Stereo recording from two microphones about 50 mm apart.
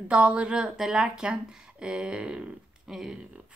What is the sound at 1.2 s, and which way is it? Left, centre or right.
A woman's voice, right.